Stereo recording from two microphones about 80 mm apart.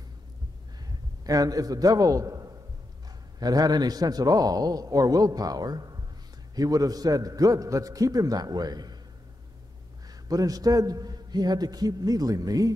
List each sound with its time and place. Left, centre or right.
1.2 s a man's voice: right
10.2 s a man's voice: right